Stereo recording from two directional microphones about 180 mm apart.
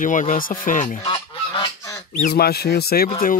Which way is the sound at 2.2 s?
60° left (ahead or behind).